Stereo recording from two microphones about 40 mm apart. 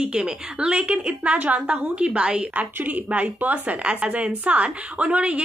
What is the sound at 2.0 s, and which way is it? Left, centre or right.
Speech, right.